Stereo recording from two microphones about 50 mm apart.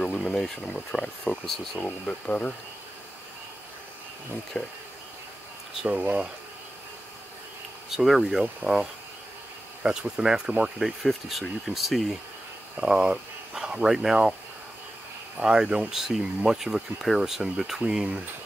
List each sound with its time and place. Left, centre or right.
0.2 s speech: centre
2.0 s speech: left
4.6 s speech: centre
5.9 s speech: right
7.9 s speech: centre
9.8 s speech: centre
10.8 s speech: centre
12.7 s speech: centre
15.4 s speech: centre